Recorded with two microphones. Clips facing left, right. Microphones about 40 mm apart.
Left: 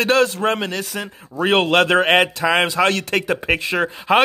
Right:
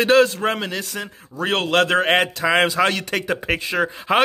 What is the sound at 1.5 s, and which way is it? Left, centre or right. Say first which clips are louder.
A man's voice: left 3 dB; centre.